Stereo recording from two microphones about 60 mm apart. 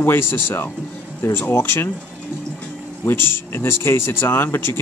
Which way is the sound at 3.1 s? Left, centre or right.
Left.